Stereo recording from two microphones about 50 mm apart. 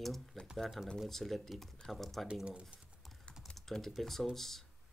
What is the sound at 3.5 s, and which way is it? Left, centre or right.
Typing, centre.